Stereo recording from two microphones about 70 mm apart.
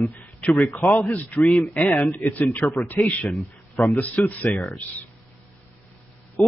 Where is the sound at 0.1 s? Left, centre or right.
Left.